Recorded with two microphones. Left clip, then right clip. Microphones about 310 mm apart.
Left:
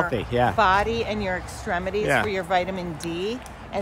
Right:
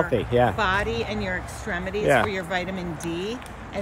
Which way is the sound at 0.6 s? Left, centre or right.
Centre.